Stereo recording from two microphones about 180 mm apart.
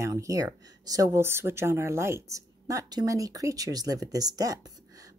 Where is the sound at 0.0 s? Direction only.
15° right (ahead or behind).